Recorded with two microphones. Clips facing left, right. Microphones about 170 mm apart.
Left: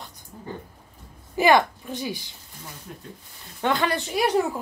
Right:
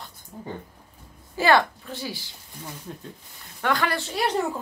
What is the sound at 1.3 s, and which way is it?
Speech, 15° left (ahead or behind).